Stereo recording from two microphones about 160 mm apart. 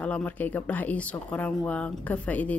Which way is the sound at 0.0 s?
10° left (ahead or behind).